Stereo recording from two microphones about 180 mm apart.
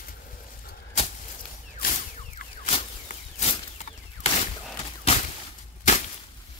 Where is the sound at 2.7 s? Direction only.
35° left (ahead or behind).